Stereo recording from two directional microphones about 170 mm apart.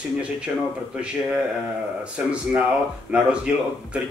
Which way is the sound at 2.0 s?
5° right (ahead or behind).